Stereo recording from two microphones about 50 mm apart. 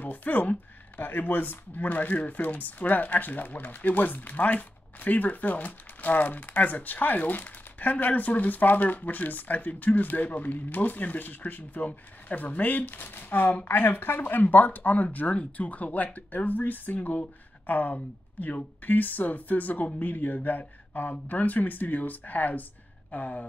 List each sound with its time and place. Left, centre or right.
0.0 s speech: left